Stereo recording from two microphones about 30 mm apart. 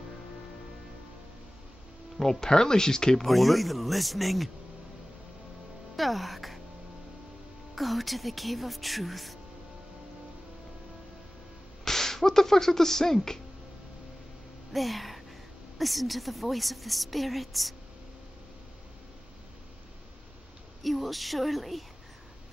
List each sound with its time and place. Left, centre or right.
2.1 s speech: left
3.3 s a woman's voice: centre
5.9 s speech: centre
7.7 s a woman's voice: centre
11.8 s speech: centre
14.7 s a sound: centre
15.8 s a woman's voice: centre
20.8 s a woman's voice: centre